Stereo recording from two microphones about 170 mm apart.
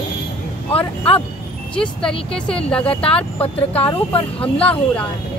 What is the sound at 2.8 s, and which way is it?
Speech, 35° left (ahead or behind).